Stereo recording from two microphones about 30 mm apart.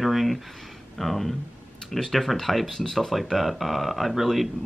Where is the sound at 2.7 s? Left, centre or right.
Centre.